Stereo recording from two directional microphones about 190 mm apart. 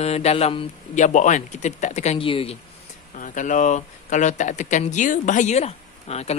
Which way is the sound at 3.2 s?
40° left (ahead or behind).